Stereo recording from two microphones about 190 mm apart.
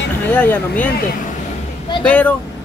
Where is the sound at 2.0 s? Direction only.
5° left (ahead or behind).